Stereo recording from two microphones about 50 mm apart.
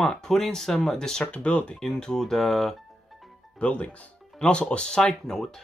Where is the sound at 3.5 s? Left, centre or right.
Left; by 5.6 s centre.